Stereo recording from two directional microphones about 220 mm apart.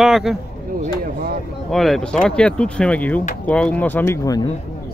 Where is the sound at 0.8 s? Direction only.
40° right (ahead or behind).